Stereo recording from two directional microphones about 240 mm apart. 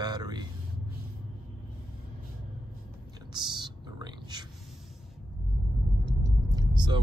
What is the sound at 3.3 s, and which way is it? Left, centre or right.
Whispering, centre.